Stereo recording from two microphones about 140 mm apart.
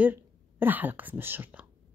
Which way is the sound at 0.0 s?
15° right (ahead or behind).